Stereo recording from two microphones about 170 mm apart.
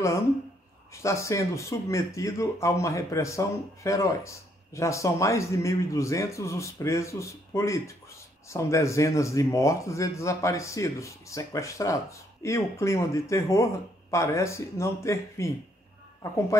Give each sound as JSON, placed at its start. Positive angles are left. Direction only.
{"t": 0.9, "sound": "speech", "side_deg": 15}